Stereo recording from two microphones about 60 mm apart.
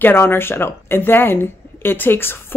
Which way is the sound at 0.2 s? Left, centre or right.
Left.